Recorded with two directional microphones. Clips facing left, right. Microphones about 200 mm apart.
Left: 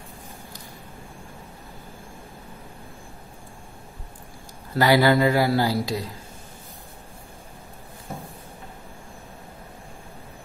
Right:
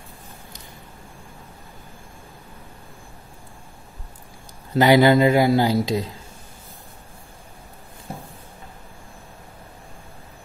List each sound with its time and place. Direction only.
4.7 s speech: 20° right (ahead or behind)